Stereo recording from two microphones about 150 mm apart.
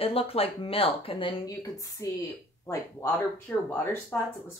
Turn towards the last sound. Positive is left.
turn(degrees=15)  # may be behind; listen again after turning